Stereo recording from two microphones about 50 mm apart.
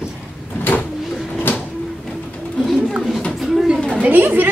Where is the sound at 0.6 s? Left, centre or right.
Left.